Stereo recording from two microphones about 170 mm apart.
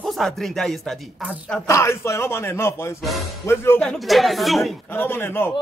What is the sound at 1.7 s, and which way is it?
A woman's voice, 15° left (ahead or behind).